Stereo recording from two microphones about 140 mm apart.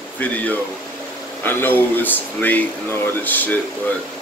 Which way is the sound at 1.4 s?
15° left (ahead or behind).